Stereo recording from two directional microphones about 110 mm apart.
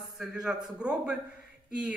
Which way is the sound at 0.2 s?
5° right (ahead or behind).